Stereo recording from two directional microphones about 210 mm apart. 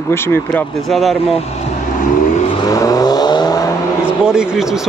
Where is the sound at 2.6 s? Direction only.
15° left (ahead or behind).